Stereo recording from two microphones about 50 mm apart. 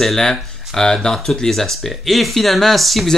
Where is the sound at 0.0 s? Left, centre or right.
Centre.